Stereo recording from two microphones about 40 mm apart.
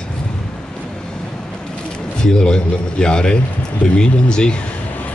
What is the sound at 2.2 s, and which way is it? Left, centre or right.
A man's voice, left.